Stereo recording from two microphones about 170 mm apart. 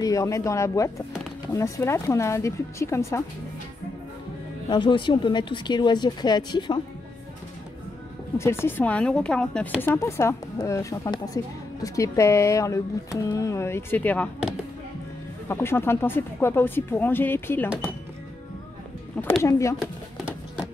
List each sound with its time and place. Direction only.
0.0 s speech: 20° left (ahead or behind)
4.6 s speech: 25° left (ahead or behind)
8.4 s speech: 15° left (ahead or behind)
19.2 s speech: 5° left (ahead or behind)